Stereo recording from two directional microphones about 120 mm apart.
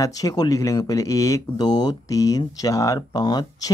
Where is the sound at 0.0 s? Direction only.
30° left (ahead or behind).